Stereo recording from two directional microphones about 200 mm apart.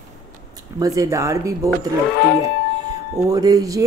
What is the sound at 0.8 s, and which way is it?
Speech, 15° right (ahead or behind).